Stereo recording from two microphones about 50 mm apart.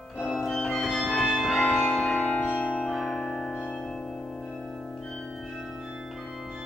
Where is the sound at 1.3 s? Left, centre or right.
Centre; by 2.9 s left.